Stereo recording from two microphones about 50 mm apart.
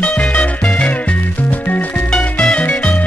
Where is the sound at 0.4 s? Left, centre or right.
Centre.